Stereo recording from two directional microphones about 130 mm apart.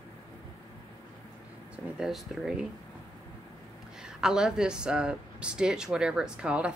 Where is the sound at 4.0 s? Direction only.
5° right (ahead or behind).